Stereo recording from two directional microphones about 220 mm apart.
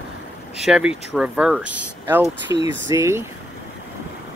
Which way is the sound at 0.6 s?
5° right (ahead or behind).